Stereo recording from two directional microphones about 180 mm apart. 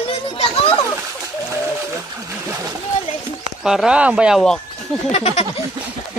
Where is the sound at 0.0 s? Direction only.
30° left (ahead or behind).